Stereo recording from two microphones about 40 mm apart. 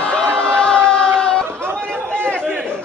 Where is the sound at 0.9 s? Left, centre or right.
Left.